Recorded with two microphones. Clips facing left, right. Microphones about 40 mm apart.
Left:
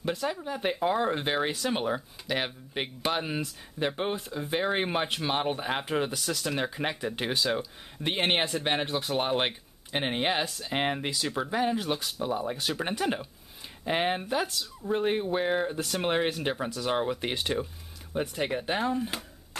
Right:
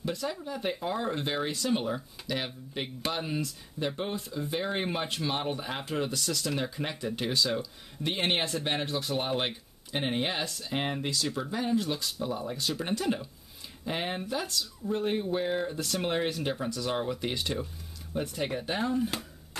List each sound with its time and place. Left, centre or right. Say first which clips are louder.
0.0 s speech: left 3 dB; left